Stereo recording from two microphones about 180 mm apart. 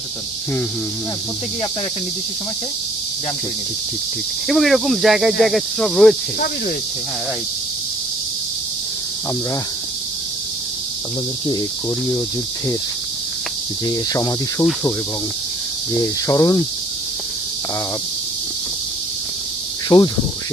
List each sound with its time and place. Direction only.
4.5 s speech: centre (ahead or behind)
13.8 s cricket: 20° left (ahead or behind)
16.3 s cricket: 20° left (ahead or behind)
19.9 s cricket: 25° left (ahead or behind)